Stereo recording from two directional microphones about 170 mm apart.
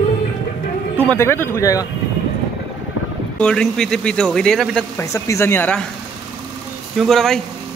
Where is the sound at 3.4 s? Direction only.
5° left (ahead or behind).